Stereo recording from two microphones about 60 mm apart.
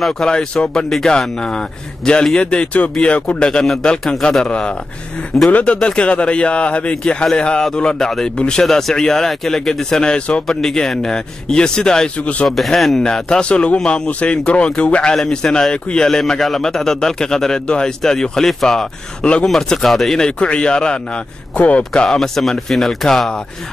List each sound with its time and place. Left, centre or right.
0.0 s a man's voice: centre; by 5.8 s left
5.8 s a man's voice: centre
12.4 s a man's voice: centre; by 22.0 s left
22.0 s speech: centre